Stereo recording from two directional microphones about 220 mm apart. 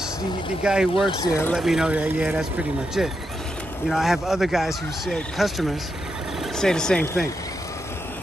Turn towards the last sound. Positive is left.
turn(degrees=5)  # may be behind; listen again after turning